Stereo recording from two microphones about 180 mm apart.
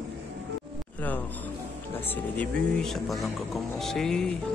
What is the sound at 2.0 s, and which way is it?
Speech, 10° left (ahead or behind).